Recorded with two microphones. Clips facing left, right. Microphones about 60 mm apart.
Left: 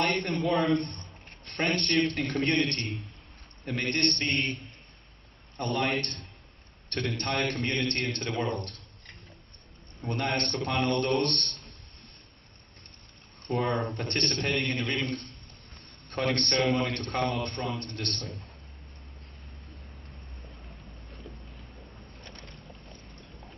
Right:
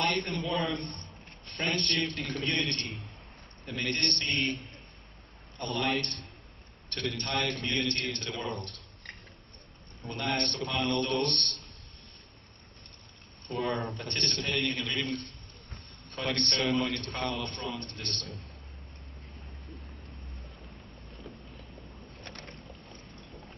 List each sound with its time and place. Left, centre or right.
0.2 s a man's voice: left
0.7 s speech: left
1.4 s a sound: left
1.9 s a man's voice: left
2.1 s a man's voice: left
5.8 s a man's voice: left
10.0 s a man's voice: left
13.5 s a man's voice: left
17.6 s a man's voice: left